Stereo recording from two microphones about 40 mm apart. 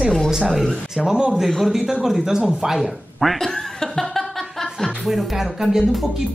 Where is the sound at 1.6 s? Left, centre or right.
Centre.